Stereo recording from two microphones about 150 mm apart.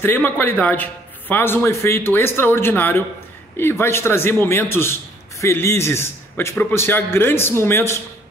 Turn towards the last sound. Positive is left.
turn(degrees=15)  # may be behind; listen again after turning